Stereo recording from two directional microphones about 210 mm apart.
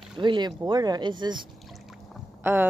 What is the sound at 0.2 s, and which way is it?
Speech, 20° right (ahead or behind).